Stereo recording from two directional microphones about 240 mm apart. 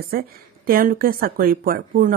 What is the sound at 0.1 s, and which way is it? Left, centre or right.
A woman's voice, right.